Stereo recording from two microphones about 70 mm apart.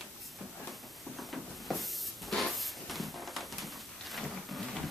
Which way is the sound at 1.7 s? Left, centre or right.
Centre.